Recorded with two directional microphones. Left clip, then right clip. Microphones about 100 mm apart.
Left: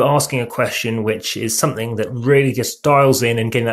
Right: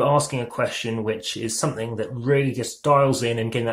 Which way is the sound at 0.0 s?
35° left (ahead or behind).